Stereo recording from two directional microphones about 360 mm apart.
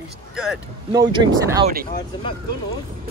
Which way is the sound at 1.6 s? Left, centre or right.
Right.